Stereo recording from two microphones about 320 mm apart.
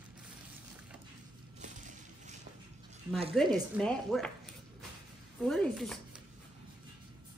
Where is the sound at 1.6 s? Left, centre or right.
Right.